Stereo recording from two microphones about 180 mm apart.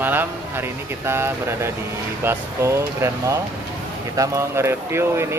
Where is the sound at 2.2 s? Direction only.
15° right (ahead or behind).